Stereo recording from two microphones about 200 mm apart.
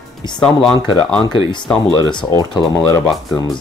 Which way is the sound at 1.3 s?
20° left (ahead or behind).